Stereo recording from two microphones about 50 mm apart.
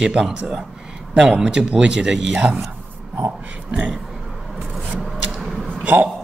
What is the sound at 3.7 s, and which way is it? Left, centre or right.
Speech, right.